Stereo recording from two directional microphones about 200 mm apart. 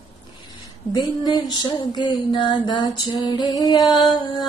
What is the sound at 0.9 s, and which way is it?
Speech, 20° left (ahead or behind).